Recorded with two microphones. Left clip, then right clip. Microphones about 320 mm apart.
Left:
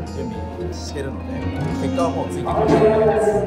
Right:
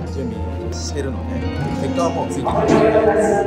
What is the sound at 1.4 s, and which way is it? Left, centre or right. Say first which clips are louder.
Speech: right 1 dB; centre.